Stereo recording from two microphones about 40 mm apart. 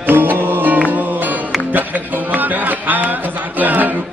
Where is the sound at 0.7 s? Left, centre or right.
Right.